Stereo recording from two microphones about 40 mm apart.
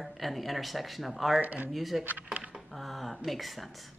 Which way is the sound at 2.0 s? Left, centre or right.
Right.